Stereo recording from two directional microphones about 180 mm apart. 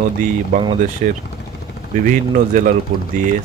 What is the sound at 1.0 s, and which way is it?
Speech, 50° right (ahead or behind).